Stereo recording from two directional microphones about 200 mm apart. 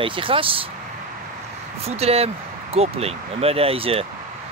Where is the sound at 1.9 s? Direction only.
30° right (ahead or behind).